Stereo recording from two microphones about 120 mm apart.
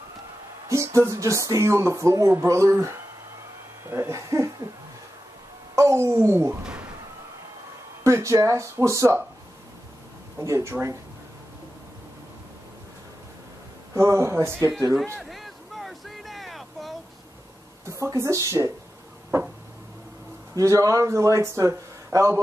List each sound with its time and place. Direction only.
0.7 s speech: 25° right (ahead or behind)
5.8 s speech: 25° right (ahead or behind)
6.6 s a sound: 10° right (ahead or behind)
8.0 s speech: 25° right (ahead or behind)
10.4 s speech: 25° right (ahead or behind)
13.9 s speech: 20° right (ahead or behind)
15.1 s vehicle: centre (ahead or behind)
17.8 s speech: 25° right (ahead or behind)
20.5 s speech: 25° right (ahead or behind)